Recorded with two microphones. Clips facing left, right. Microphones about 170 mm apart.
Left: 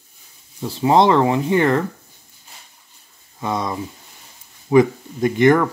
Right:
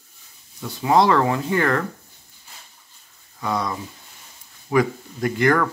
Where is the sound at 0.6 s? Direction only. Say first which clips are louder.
Left 3 dB; 25° left (ahead or behind).